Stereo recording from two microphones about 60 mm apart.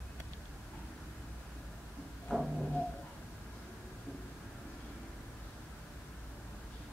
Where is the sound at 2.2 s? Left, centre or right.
Centre.